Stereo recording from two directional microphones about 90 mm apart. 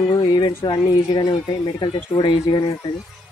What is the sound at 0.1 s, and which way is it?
Speech, 55° left (ahead or behind).